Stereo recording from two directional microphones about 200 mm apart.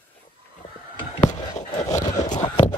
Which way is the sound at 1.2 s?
35° left (ahead or behind).